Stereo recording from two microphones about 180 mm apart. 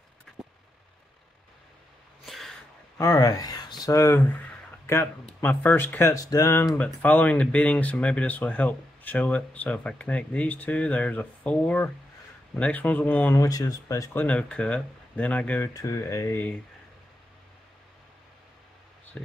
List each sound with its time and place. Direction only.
2.2 s a sound: centre (ahead or behind)
3.0 s speech: 20° left (ahead or behind)
19.1 s speech: 10° left (ahead or behind)